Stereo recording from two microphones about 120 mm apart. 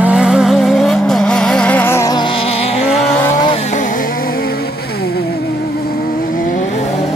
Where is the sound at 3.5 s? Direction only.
80° left.